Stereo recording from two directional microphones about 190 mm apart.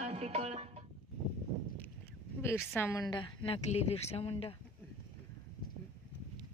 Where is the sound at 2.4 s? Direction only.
15° left (ahead or behind); by 4.6 s 30° left (ahead or behind).